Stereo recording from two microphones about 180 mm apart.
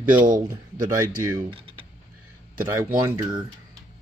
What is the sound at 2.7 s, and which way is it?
Speech, 15° right (ahead or behind).